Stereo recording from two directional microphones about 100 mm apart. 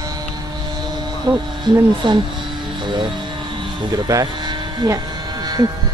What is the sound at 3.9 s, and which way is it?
Speech, 35° right (ahead or behind).